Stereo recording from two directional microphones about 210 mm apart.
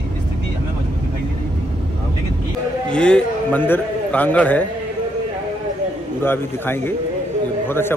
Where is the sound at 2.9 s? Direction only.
5° left (ahead or behind).